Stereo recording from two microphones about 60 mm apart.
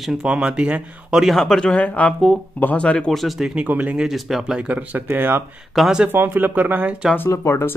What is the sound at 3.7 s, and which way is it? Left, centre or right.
Speech, right.